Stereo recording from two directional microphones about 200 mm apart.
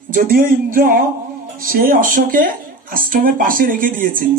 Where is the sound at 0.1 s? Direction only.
45° right (ahead or behind).